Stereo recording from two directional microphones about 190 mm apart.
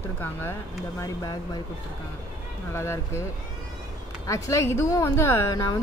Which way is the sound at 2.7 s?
15° left (ahead or behind).